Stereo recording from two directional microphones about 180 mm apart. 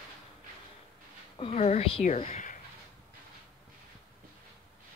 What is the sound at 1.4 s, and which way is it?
A woman's voice, 35° left (ahead or behind).